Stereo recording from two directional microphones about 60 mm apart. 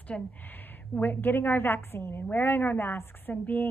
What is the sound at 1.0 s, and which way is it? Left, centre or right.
A woman's voice, left.